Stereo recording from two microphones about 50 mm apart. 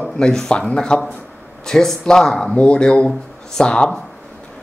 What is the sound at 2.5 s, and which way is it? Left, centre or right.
Speech, left.